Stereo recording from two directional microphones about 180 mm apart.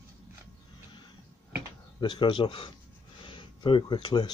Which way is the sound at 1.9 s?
25° left (ahead or behind).